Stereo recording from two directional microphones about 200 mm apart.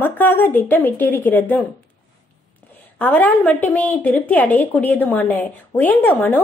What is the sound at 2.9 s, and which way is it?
A woman's voice, 10° left (ahead or behind).